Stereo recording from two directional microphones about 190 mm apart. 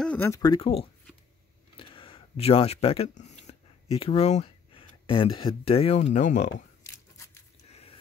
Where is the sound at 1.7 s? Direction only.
30° left (ahead or behind).